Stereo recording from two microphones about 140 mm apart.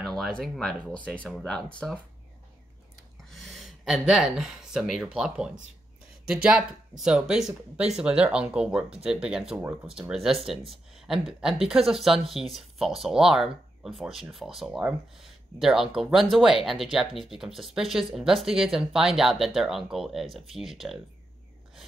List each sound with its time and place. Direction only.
0.0 s speech: 5° left (ahead or behind)
3.3 s speech: centre (ahead or behind)